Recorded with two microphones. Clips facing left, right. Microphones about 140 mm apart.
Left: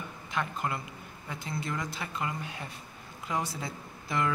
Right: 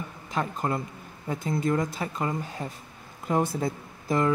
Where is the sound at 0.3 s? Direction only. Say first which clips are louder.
Right 5 dB; 40° right (ahead or behind).